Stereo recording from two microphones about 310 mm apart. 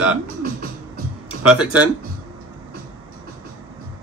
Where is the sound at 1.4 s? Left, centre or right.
Centre.